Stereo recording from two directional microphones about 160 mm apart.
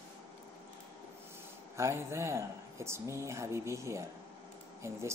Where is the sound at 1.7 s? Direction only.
15° right (ahead or behind).